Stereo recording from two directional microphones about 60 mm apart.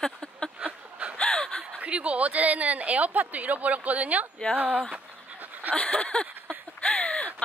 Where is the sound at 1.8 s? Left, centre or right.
Right.